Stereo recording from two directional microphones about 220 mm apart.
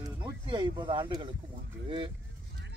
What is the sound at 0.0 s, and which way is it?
Speech, 20° right (ahead or behind).